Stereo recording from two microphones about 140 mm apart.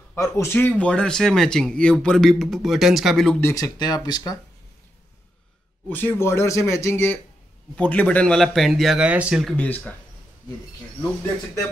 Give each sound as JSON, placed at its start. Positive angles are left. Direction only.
{"t": 0.1, "sound": "speech", "side_deg": 20}
{"t": 3.3, "sound": "speech", "side_deg": 20}
{"t": 5.9, "sound": "speech", "side_deg": 15}
{"t": 9.4, "sound": "speech", "side_deg": 0}